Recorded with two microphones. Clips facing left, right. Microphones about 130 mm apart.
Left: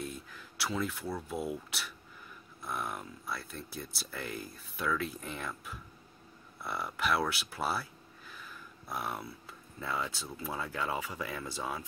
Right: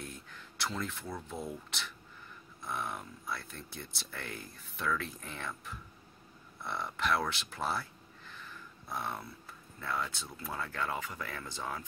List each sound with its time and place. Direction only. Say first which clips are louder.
0.0 s speech: left 5 dB; 5° left (ahead or behind)